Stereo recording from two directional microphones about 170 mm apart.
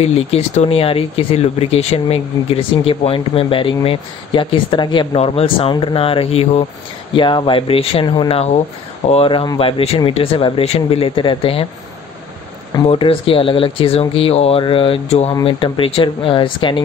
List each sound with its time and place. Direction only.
0.0 s speech: 35° left (ahead or behind)
12.7 s speech: 30° left (ahead or behind)